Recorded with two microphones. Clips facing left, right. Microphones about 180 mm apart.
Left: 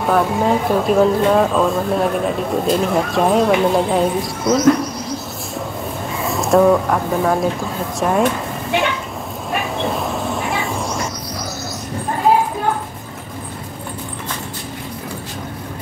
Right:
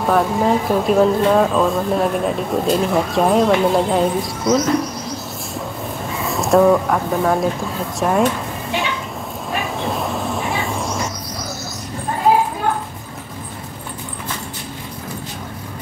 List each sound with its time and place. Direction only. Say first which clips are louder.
0.1 s speech: even; centre (ahead or behind)
6.1 s speech: even; centre (ahead or behind)
9.8 s train: left 1 dB; centre (ahead or behind)